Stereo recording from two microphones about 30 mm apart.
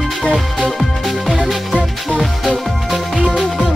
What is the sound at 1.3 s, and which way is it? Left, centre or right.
Music, centre.